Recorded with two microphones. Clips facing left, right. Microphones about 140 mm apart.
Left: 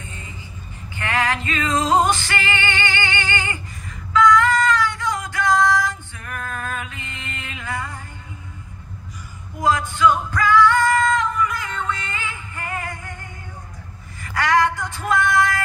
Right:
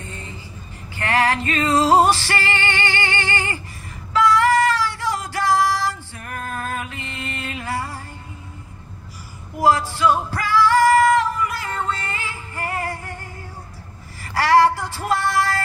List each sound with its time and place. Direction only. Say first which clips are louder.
0.9 s music: right 3 dB; 35° right (ahead or behind)
4.1 s female singing: left 1 dB; 30° right (ahead or behind)
9.6 s music: right 1 dB; 30° right (ahead or behind)
14.2 s female singing: right 3 dB; 30° right (ahead or behind)